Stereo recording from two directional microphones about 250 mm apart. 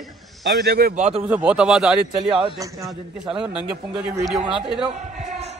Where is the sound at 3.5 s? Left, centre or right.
Centre.